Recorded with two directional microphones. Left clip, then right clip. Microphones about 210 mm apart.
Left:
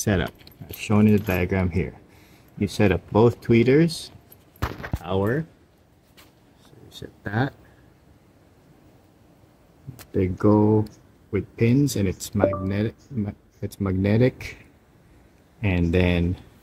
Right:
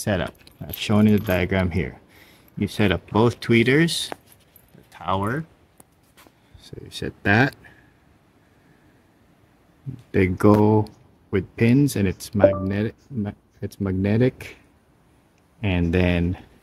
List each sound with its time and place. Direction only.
0.0 s speech: 10° right (ahead or behind)
7.2 s speech: 40° right (ahead or behind)
10.4 s speech: 45° right (ahead or behind); by 14.6 s 20° right (ahead or behind)
15.6 s speech: 20° right (ahead or behind)